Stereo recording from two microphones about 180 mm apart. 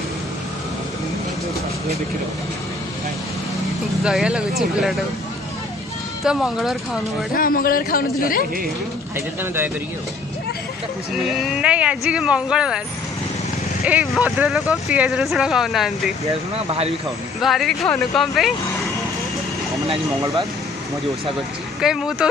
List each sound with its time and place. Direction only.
4.0 s speech: 5° right (ahead or behind)
6.2 s speech: centre (ahead or behind)
7.3 s speech: 50° left (ahead or behind)
9.1 s speech: 10° right (ahead or behind)
11.1 s speech: centre (ahead or behind)
13.8 s speech: 10° right (ahead or behind)
16.3 s speech: 35° right (ahead or behind)
17.4 s speech: centre (ahead or behind)
20.1 s speech: 20° right (ahead or behind)
21.8 s speech: 5° right (ahead or behind)